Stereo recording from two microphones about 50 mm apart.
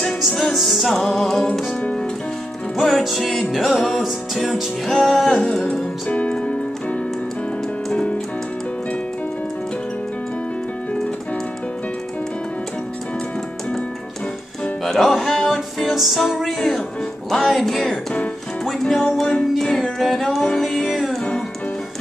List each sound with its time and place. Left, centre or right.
0.2 s music: centre
2.8 s music: centre
5.3 s music: centre
6.1 s keyboard: left
7.9 s music: left
14.9 s music: centre
20.0 s music: centre